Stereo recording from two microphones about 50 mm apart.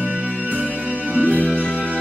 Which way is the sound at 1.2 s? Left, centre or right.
Left.